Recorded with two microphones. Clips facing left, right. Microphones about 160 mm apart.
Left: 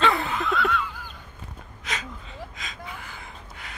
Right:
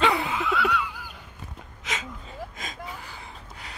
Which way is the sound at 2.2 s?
45° right (ahead or behind).